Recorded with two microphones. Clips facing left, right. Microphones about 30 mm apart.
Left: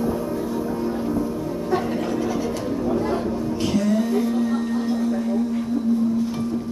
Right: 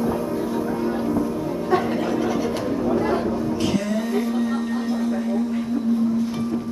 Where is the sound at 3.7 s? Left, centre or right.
Centre.